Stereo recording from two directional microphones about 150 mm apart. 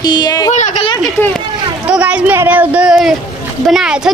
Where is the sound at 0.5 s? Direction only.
50° left (ahead or behind).